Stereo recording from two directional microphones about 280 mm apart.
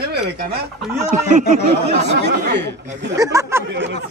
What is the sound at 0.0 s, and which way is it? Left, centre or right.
Chicken, right.